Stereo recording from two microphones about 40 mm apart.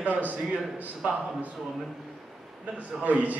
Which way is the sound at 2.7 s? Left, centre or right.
Right.